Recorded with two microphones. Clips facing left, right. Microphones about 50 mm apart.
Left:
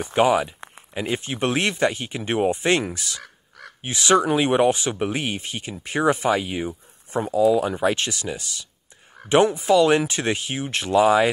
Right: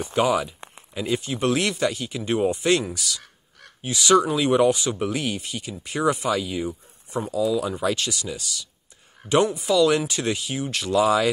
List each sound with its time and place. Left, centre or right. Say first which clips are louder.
0.0 s speech: left 3 dB; left